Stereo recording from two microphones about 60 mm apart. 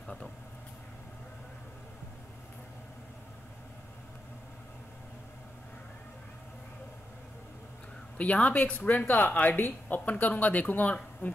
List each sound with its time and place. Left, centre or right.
0.0 s vehicle: centre
8.2 s speech: left